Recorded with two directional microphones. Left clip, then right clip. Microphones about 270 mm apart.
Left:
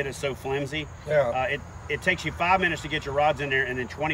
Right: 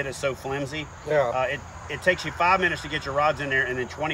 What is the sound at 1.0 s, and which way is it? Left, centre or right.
Speech, right.